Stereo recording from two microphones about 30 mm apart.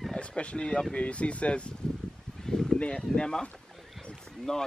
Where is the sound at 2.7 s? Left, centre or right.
Left.